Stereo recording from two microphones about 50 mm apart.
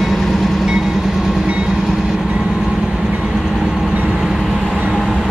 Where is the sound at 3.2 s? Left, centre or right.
Centre.